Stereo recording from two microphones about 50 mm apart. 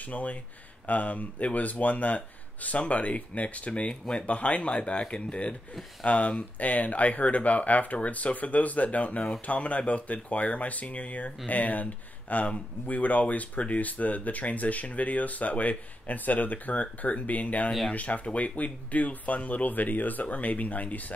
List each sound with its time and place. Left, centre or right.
0.0 s speech: left